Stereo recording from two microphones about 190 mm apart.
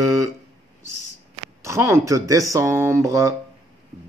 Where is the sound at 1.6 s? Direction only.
15° right (ahead or behind).